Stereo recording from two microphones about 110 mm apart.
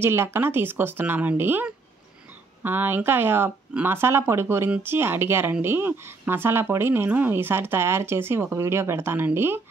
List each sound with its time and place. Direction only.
0.0 s speech: 20° right (ahead or behind)